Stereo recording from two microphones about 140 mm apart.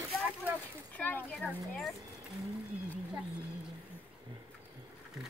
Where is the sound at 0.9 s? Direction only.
15° left (ahead or behind).